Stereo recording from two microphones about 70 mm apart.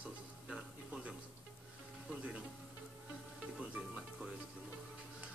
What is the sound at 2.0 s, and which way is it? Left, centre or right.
Music, centre.